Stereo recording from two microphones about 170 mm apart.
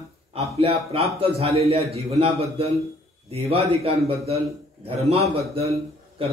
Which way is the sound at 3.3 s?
35° right (ahead or behind).